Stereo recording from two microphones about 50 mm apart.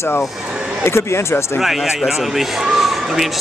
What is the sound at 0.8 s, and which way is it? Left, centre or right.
Speech, left.